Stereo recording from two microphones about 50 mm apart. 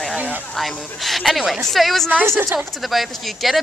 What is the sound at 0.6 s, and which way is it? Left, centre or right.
Speech, centre.